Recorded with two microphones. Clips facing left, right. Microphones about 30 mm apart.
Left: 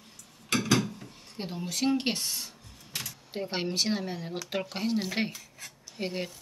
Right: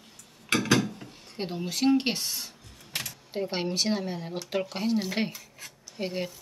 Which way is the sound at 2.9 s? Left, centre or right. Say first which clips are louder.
Right 3 dB; right.